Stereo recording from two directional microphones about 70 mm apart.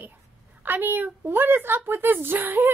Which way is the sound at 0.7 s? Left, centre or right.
Right.